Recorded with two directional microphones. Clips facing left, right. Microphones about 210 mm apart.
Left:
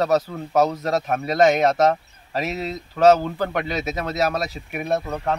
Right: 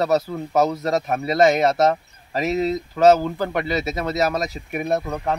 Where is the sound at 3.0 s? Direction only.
5° right (ahead or behind).